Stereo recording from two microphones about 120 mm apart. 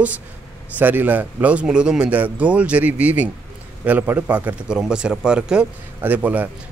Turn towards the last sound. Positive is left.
turn(degrees=-15)  # may be behind; listen again after turning